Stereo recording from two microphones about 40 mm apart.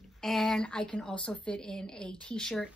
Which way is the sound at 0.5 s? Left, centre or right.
Centre.